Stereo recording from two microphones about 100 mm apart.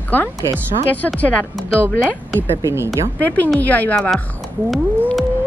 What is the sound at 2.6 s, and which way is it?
Speech, 25° right (ahead or behind).